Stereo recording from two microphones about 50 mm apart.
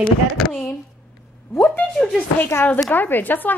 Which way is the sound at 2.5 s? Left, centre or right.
Left.